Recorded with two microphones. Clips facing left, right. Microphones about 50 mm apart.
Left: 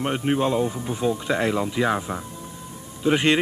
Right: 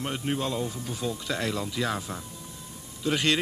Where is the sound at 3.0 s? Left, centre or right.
Left.